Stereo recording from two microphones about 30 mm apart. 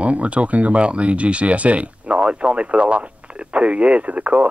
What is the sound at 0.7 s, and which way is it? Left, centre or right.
Speech, right.